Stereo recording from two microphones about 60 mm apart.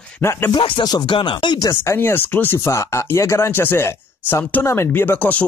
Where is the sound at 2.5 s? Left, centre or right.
Left.